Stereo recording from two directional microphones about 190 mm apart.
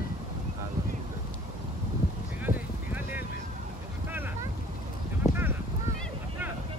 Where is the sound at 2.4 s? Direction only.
10° right (ahead or behind).